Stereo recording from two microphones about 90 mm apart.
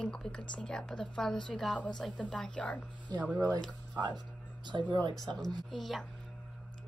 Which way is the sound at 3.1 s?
45° right (ahead or behind).